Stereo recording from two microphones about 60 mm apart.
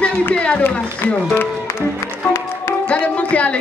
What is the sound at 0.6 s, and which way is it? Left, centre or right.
Run, left.